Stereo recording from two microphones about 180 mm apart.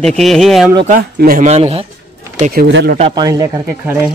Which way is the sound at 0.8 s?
55° right (ahead or behind).